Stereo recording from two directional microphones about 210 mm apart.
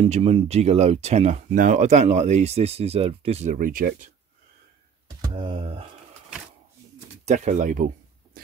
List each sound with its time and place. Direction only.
0.0 s speech: 30° right (ahead or behind)
5.2 s a sound: 25° right (ahead or behind)
7.2 s speech: 35° right (ahead or behind)